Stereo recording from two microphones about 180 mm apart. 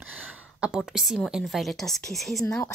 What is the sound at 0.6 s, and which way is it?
Speech, 5° right (ahead or behind).